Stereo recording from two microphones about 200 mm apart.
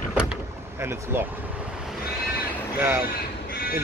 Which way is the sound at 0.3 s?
10° right (ahead or behind).